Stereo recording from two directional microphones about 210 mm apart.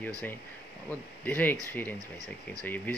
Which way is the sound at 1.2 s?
10° left (ahead or behind).